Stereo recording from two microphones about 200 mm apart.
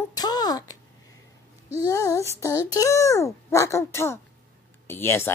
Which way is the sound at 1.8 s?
15° left (ahead or behind).